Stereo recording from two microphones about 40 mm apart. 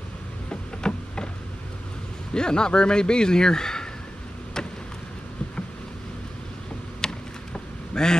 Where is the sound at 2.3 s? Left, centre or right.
Left.